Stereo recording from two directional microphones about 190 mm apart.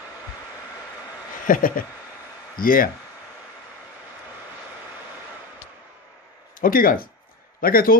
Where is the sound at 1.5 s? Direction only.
45° left (ahead or behind).